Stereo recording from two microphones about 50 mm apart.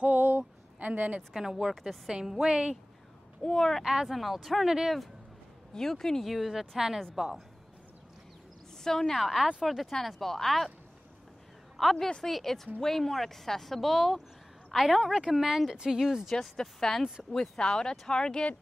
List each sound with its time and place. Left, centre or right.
0.0 s a sound: right
0.7 s a woman's voice: right
1.3 s speech: centre
3.4 s speech: centre
3.8 s speech: centre
5.7 s speech: centre
6.2 s speech: centre
8.8 s speech: centre
9.4 s speech: centre
11.7 s a woman's voice: centre
16.3 s speech: centre